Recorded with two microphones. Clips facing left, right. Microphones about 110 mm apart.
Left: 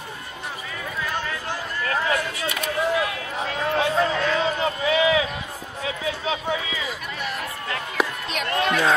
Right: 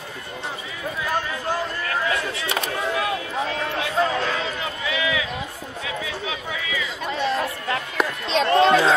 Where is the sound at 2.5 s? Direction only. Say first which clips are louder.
Left 2 dB; 30° right (ahead or behind).